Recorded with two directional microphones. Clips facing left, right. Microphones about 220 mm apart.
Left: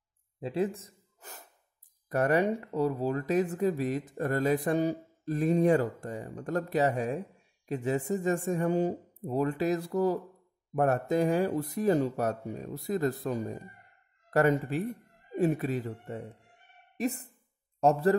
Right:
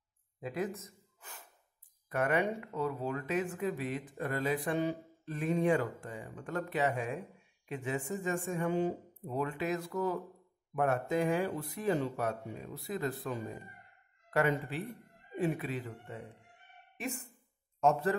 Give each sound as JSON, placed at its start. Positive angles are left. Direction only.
{"t": 0.4, "sound": "gasp", "side_deg": 30}
{"t": 2.0, "sound": "speech", "side_deg": 40}